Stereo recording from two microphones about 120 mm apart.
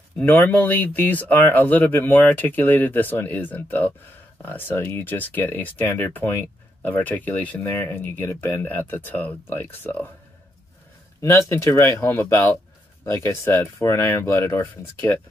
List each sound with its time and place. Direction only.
0.2 s speech: 10° left (ahead or behind)
11.1 s speech: 25° left (ahead or behind)